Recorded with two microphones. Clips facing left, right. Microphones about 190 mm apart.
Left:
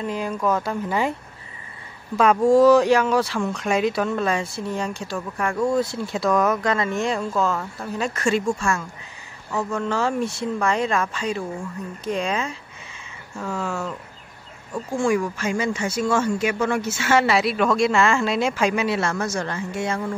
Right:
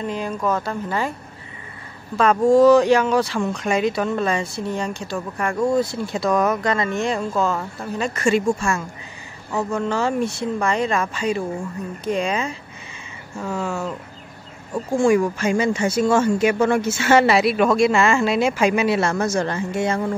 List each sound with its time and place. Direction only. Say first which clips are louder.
0.0 s speech: even; 5° left (ahead or behind)
2.1 s speech: right 1 dB; 5° left (ahead or behind); by 8.8 s 10° right (ahead or behind)
9.8 s speech: right 2 dB; centre (ahead or behind)
15.0 s speech: right 5 dB; 20° right (ahead or behind)
17.4 s speech: right 3 dB; 10° right (ahead or behind); by 20.0 s 30° right (ahead or behind)